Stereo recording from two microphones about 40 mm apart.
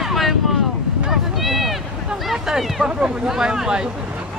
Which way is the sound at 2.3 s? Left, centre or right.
Centre.